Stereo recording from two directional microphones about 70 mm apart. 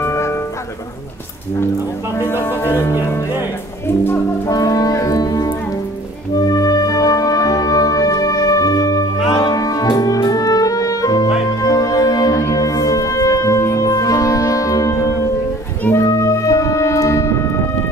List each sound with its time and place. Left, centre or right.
0.0 s music: left
2.1 s speech: left
3.8 s speech: left
4.5 s speech: left
6.3 s music: left